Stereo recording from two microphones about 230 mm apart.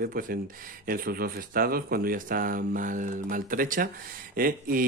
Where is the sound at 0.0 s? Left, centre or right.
Right.